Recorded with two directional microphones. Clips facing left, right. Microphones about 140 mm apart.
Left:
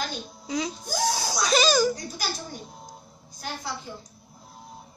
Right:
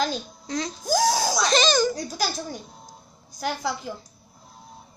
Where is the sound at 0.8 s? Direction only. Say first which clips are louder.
Right 6 dB; 90° right.